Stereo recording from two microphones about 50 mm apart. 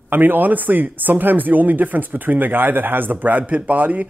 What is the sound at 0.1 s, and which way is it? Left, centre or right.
Speech, right.